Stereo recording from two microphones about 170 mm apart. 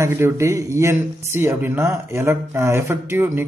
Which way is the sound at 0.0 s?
15° right (ahead or behind).